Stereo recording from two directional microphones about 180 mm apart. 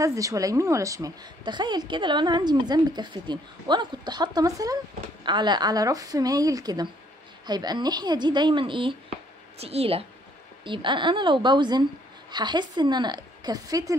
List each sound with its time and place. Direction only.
0.0 s a woman's voice: 20° right (ahead or behind)